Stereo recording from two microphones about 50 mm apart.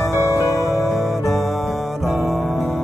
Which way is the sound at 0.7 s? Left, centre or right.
Centre.